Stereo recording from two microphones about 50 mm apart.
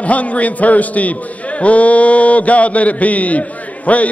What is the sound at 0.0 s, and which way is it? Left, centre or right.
Mantra, left.